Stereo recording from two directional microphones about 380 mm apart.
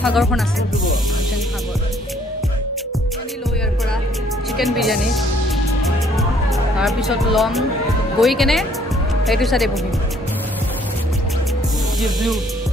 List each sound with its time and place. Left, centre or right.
0.0 s speech: centre
4.6 s speech: centre
6.8 s speech: centre
12.0 s speech: centre